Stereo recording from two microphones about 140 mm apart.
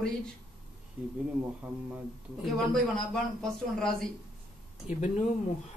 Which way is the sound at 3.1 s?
5° left (ahead or behind).